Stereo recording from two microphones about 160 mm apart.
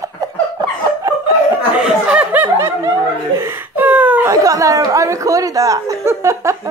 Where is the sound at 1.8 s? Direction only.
5° right (ahead or behind).